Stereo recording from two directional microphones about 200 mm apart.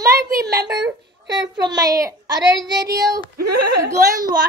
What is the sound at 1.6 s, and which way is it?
A child's voice, 20° right (ahead or behind).